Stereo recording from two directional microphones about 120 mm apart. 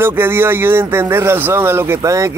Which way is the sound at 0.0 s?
20° right (ahead or behind).